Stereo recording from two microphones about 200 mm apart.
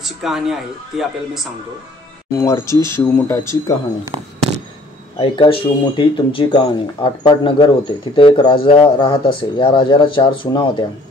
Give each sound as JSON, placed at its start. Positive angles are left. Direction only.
{"t": 0.0, "sound": "speech", "side_deg": 0}
{"t": 2.3, "sound": "speech", "side_deg": 15}
{"t": 5.2, "sound": "speech", "side_deg": 25}